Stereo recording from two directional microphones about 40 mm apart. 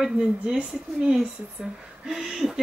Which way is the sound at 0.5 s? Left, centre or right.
Centre.